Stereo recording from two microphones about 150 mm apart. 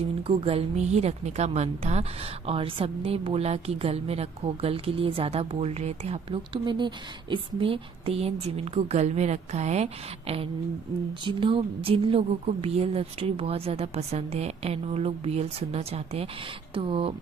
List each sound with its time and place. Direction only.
0.0 s a woman's voice: 40° right (ahead or behind)
6.5 s a woman's voice: 30° right (ahead or behind)